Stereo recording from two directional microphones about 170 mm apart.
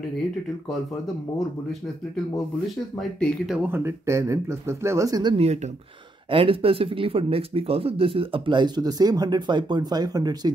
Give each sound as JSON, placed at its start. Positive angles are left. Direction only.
{"t": 3.0, "sound": "speech", "side_deg": 0}
{"t": 6.3, "sound": "speech", "side_deg": -35}